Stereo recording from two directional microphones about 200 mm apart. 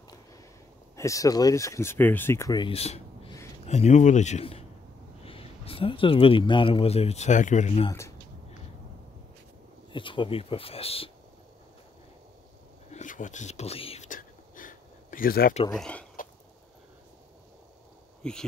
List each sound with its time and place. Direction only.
0.9 s a man's voice: 15° left (ahead or behind); by 7.9 s 35° left (ahead or behind)
9.9 s speech: 25° left (ahead or behind)
12.9 s a sound: 40° left (ahead or behind)
15.7 s speech: 5° left (ahead or behind)
18.2 s speech: 5° left (ahead or behind)